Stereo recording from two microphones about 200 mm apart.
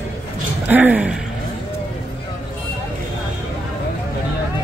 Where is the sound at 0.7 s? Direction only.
10° right (ahead or behind).